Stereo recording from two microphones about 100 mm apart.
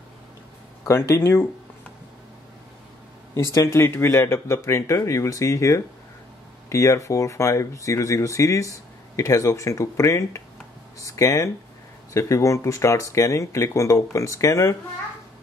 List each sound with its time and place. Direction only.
0.8 s speech: 30° left (ahead or behind)
3.5 s speech: 30° left (ahead or behind)